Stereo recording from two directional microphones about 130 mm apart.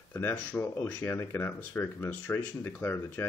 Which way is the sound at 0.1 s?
15° left (ahead or behind).